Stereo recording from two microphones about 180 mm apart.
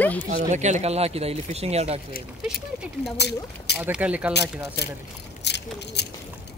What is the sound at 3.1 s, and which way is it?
Speech, 65° left (ahead or behind).